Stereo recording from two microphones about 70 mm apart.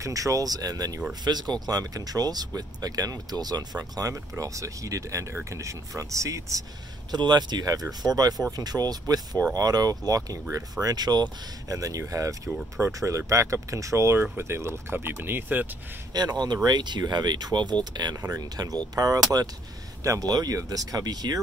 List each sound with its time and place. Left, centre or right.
0.0 s speech: right
1.2 s speech: right
4.1 s speech: right
7.1 s speech: right
11.7 s speech: right
16.1 s speech: right
18.2 s speech: right